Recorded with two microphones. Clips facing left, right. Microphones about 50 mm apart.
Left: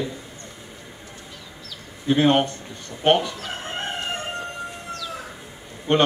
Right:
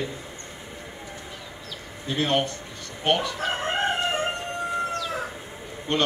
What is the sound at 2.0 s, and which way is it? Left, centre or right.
Speech, left.